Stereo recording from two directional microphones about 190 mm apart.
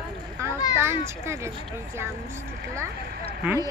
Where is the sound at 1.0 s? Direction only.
15° right (ahead or behind).